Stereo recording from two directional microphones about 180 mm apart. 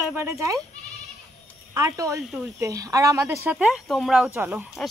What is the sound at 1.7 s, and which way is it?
Speech, 15° right (ahead or behind).